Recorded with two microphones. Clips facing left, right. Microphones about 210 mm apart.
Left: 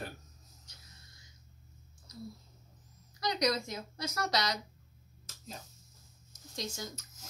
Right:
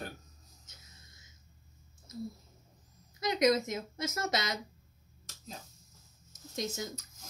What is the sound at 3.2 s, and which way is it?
A woman's voice, 20° right (ahead or behind).